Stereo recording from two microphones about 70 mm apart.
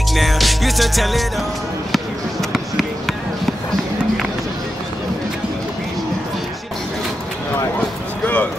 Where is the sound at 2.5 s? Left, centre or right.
Centre.